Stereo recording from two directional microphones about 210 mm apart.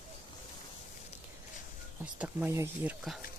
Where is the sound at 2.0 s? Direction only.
5° right (ahead or behind).